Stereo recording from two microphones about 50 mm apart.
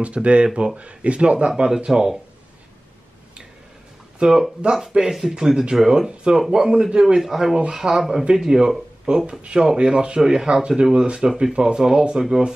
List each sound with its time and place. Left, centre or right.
0.0 s speech: right
4.2 s speech: centre
7.2 s speech: centre